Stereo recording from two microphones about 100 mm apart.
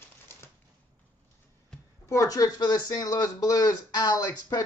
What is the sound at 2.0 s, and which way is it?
Speech, 30° left (ahead or behind).